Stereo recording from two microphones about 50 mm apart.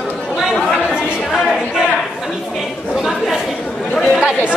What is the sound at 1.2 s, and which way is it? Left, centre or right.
A capella, centre.